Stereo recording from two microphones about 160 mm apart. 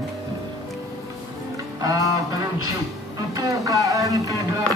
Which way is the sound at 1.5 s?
20° right (ahead or behind).